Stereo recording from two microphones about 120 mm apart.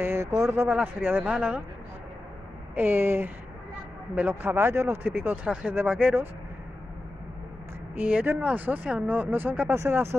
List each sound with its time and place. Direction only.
0.0 s speech: 20° right (ahead or behind)
0.7 s speech: 10° right (ahead or behind)
2.7 s speech: 15° right (ahead or behind)
7.9 s speech: 10° right (ahead or behind)